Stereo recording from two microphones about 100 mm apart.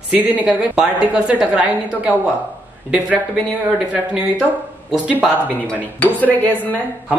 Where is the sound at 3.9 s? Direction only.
10° right (ahead or behind).